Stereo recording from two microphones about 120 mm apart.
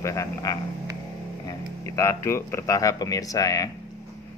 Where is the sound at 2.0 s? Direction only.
25° left (ahead or behind).